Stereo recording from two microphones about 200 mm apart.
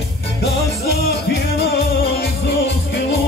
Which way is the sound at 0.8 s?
55° left (ahead or behind).